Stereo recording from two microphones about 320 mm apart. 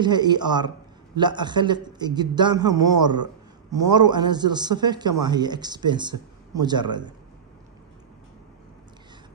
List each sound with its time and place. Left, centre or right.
0.0 s a man's voice: centre